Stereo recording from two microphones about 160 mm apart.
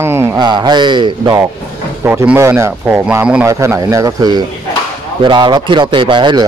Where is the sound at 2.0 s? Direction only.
15° right (ahead or behind).